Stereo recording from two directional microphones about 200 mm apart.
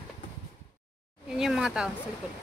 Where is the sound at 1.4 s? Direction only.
Centre (ahead or behind).